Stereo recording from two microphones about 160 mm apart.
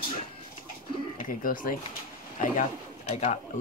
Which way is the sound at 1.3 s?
60° left (ahead or behind).